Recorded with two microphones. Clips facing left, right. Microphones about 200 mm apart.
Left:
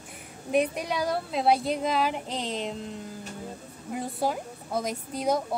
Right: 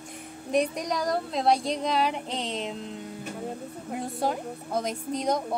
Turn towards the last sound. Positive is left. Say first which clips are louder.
# even
turn(degrees=5)  # may be behind; listen again after turning